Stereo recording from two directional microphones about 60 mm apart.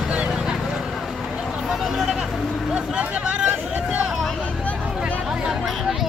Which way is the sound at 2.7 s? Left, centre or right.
Centre.